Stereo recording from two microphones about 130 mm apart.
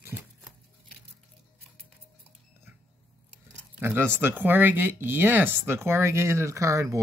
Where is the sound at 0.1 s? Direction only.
20° right (ahead or behind).